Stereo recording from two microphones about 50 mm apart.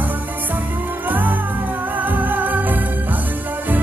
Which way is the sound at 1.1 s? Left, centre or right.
Right.